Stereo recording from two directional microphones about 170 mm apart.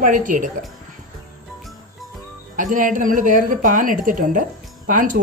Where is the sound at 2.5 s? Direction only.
50° right (ahead or behind).